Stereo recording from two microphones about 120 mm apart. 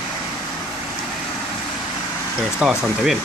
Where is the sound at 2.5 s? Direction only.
5° right (ahead or behind).